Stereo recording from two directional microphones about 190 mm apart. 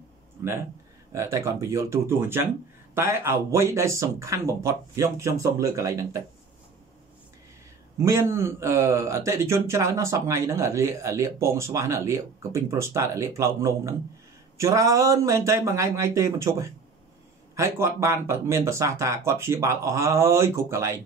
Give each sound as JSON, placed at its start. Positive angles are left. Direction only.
{"t": 1.1, "sound": "speech", "side_deg": -15}
{"t": 8.0, "sound": "speech", "side_deg": -15}